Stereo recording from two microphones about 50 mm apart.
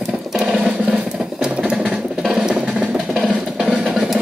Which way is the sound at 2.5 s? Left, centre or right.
Right.